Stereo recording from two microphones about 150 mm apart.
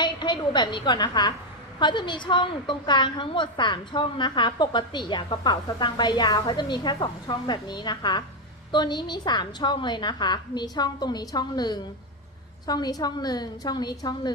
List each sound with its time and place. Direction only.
0.0 s a woman's voice: 30° left (ahead or behind)